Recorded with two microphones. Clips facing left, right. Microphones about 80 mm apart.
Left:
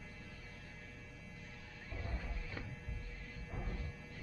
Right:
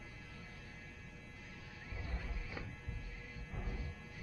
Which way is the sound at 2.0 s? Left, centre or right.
Centre.